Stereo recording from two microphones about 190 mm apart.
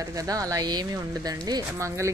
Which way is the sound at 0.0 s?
20° right (ahead or behind).